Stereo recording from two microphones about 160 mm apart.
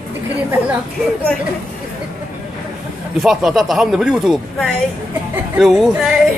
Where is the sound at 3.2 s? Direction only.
Centre (ahead or behind).